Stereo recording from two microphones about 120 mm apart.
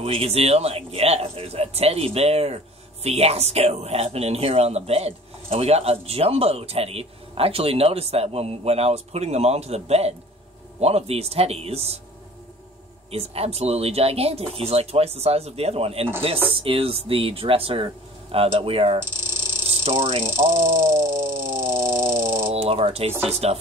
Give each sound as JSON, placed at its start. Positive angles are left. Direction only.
{"t": 0.0, "sound": "speech", "side_deg": -55}
{"t": 13.1, "sound": "speech", "side_deg": -55}
{"t": 20.2, "sound": "a sound", "side_deg": -20}
{"t": 22.5, "sound": "speech", "side_deg": -55}